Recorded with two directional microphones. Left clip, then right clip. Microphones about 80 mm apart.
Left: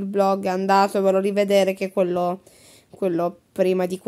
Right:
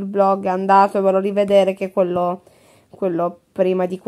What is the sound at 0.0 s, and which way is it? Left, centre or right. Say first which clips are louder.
A woman's voice: right 4 dB; left.